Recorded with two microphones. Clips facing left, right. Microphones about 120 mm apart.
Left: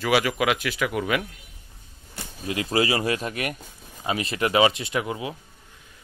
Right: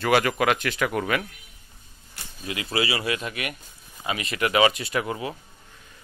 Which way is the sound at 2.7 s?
40° left (ahead or behind).